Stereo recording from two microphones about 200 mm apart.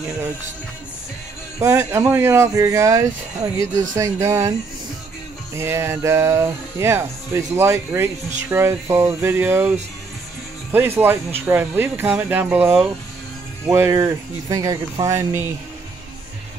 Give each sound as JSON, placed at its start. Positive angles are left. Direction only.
{"t": 1.6, "sound": "speech", "side_deg": -15}